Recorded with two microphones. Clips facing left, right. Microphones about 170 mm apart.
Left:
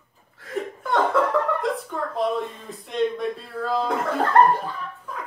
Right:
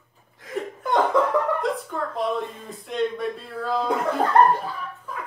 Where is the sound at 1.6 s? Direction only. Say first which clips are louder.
Even; centre (ahead or behind).